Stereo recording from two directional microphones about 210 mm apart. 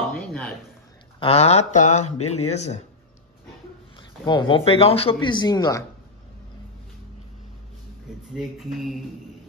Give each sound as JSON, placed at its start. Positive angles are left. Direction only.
{"t": 0.3, "sound": "a sound", "side_deg": 5}
{"t": 1.2, "sound": "speech", "side_deg": 30}
{"t": 2.1, "sound": "speech", "side_deg": 90}
{"t": 2.4, "sound": "speech", "side_deg": 30}
{"t": 4.3, "sound": "speech", "side_deg": 25}
{"t": 8.4, "sound": "mantra", "side_deg": 0}